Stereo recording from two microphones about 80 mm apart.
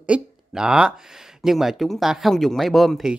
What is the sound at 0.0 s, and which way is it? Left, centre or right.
Speech, centre.